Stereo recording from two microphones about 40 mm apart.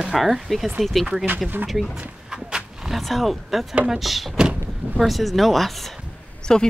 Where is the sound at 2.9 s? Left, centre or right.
Centre.